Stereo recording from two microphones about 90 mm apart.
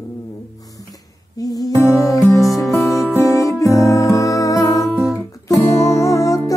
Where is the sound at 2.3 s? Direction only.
35° left (ahead or behind).